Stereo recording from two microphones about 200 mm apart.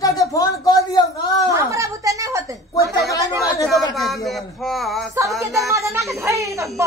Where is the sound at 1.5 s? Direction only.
15° right (ahead or behind).